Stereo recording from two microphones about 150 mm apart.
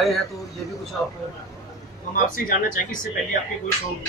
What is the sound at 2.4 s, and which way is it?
Speech, 65° left (ahead or behind).